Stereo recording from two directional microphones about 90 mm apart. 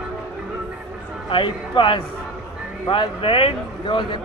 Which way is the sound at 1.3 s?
65° left (ahead or behind).